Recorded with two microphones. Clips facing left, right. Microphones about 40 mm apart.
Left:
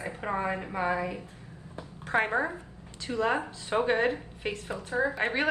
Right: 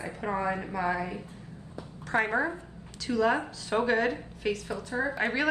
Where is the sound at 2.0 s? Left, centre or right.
Left.